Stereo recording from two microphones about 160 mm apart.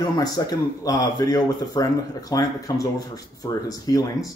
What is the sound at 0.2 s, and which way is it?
Speech, 25° left (ahead or behind).